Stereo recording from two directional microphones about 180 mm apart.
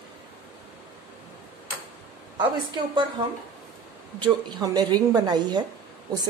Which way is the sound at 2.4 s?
25° right (ahead or behind).